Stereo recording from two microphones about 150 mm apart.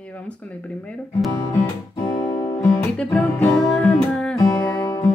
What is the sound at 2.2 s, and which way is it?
Music, 20° left (ahead or behind).